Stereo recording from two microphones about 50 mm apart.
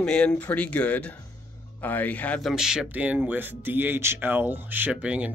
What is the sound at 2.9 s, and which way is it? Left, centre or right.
Speech, right.